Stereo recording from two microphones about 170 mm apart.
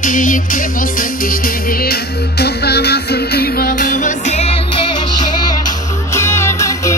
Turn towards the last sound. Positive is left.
turn(degrees=15)  # may be behind; listen again after turning